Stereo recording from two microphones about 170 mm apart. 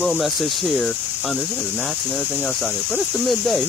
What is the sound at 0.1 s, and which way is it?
Speech, centre (ahead or behind).